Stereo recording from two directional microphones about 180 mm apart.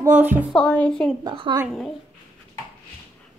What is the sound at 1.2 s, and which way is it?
Speech, 25° right (ahead or behind).